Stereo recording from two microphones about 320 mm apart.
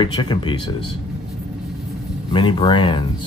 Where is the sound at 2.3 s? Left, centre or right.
Centre.